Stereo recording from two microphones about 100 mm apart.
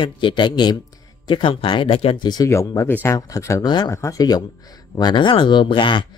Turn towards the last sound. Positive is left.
turn(degrees=55)  # may be behind; listen again after turning